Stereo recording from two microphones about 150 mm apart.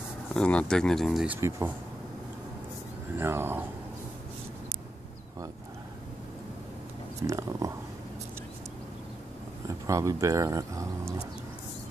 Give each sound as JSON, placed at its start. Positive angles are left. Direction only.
{"t": 0.3, "sound": "speech", "side_deg": 5}
{"t": 3.2, "sound": "speech", "side_deg": -15}
{"t": 7.2, "sound": "speech", "side_deg": -20}
{"t": 9.8, "sound": "speech", "side_deg": -20}